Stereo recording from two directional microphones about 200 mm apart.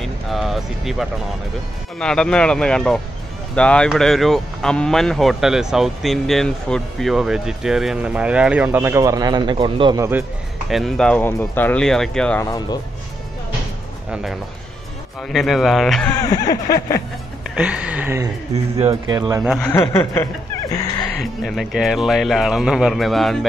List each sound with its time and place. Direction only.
0.0 s music: centre (ahead or behind)
2.0 s speech: 5° left (ahead or behind); by 10.2 s 15° right (ahead or behind)
10.7 s speech: centre (ahead or behind)
12.4 s speech: 20° left (ahead or behind)
14.1 s speech: centre (ahead or behind)
16.3 s a sound: 15° left (ahead or behind)
17.6 s speech: 5° right (ahead or behind)
18.8 s speech: 30° right (ahead or behind)
19.1 s speech: 20° right (ahead or behind)
19.4 s speech: centre (ahead or behind)
19.7 s a sound: 15° left (ahead or behind)
21.2 s speech: centre (ahead or behind)